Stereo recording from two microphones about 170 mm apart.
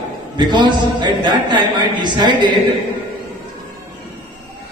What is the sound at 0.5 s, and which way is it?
Music, 25° right (ahead or behind).